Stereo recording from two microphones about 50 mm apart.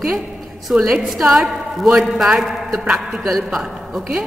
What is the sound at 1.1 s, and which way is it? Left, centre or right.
A woman's voice, centre.